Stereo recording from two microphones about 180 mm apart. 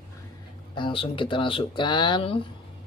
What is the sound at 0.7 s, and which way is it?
Speech, 25° left (ahead or behind).